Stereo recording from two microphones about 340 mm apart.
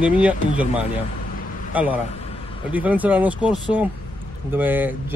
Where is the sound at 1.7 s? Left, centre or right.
Centre.